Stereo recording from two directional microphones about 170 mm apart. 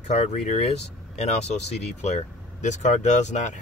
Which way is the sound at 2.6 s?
45° left (ahead or behind).